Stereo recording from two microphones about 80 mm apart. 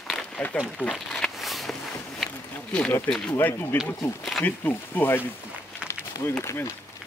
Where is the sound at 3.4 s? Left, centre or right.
Left.